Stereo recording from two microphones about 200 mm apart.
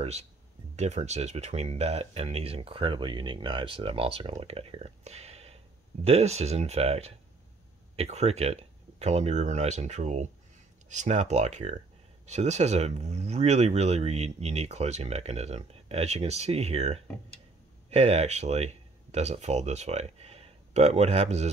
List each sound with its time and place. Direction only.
0.7 s speech: 35° right (ahead or behind)